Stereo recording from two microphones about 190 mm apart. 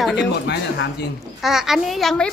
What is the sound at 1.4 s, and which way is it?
Speech, centre (ahead or behind).